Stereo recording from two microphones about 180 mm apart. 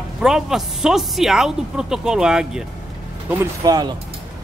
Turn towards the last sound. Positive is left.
turn(degrees=-20)  # may be behind; listen again after turning